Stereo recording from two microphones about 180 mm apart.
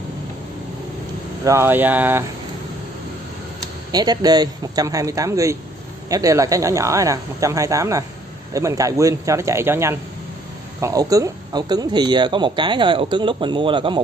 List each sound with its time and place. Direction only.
1.4 s speech: 15° right (ahead or behind)
3.9 s speech: 20° right (ahead or behind)